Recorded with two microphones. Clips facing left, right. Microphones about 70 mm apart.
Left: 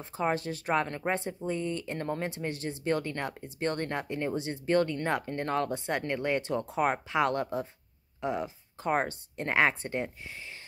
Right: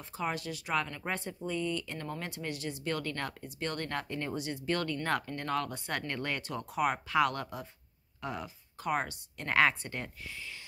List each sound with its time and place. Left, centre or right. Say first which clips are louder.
0.0 s speech: left 5 dB; left
1.0 s speech: left 5 dB; left